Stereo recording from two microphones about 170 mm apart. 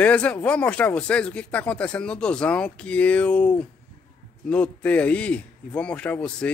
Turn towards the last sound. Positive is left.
turn(degrees=5)  # may be behind; listen again after turning